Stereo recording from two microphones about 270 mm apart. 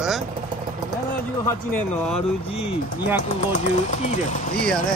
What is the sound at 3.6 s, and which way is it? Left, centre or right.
Speech, left.